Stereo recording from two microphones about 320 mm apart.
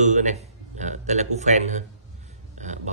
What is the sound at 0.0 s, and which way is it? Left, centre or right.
A man's voice, right.